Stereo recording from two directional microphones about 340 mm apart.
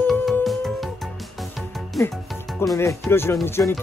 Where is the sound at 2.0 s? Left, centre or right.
Centre.